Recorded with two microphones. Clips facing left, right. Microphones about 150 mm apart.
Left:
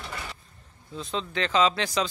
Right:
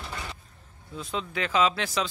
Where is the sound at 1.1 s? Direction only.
5° right (ahead or behind).